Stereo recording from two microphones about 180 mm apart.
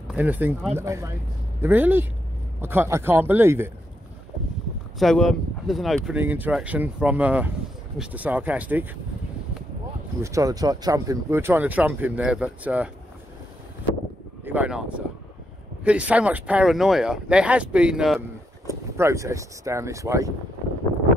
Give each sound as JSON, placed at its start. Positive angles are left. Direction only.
{"t": 0.1, "sound": "speech", "side_deg": -10}
{"t": 4.9, "sound": "speech", "side_deg": 0}
{"t": 10.2, "sound": "speech", "side_deg": -20}
{"t": 14.4, "sound": "speech", "side_deg": -10}
{"t": 18.7, "sound": "speech", "side_deg": -15}